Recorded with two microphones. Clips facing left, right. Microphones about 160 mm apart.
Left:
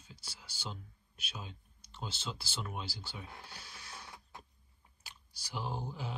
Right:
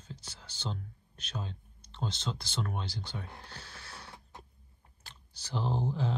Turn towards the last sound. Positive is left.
turn(degrees=10)  # may be behind; listen again after turning